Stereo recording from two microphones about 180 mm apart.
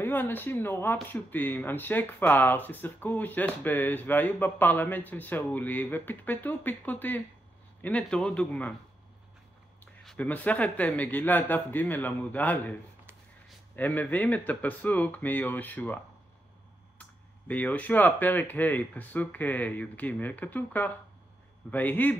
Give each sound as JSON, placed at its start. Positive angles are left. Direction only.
{"t": 0.0, "sound": "speech", "side_deg": 10}
{"t": 10.0, "sound": "speech", "side_deg": 10}
{"t": 13.7, "sound": "speech", "side_deg": 10}
{"t": 17.0, "sound": "speech", "side_deg": 10}